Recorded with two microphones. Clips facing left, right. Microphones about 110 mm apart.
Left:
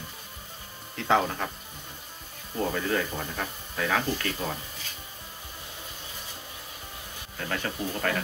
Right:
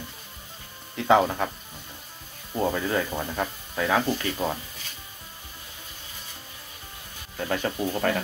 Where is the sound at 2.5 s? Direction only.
15° right (ahead or behind).